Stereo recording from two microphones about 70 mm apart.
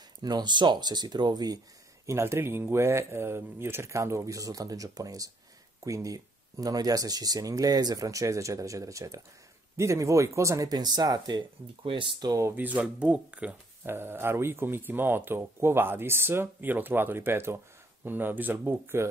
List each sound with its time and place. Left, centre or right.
0.2 s speech: right
2.0 s speech: right
10.7 s speech: right
12.2 s speech: right
12.5 s speech: right
13.8 s speech: right